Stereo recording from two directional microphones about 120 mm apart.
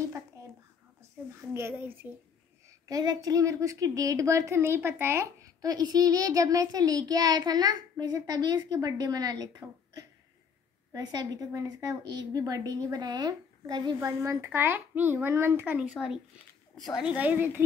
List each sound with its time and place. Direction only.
1.5 s a woman's voice: 20° right (ahead or behind)
2.9 s a woman's voice: 30° right (ahead or behind)
14.2 s a child's voice: 20° right (ahead or behind)